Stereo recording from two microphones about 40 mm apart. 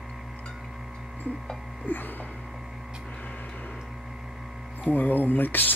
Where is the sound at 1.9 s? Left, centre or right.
Left.